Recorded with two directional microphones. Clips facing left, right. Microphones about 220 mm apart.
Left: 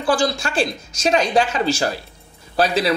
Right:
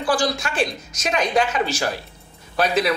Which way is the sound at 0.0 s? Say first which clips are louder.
Left 2 dB; 25° left (ahead or behind).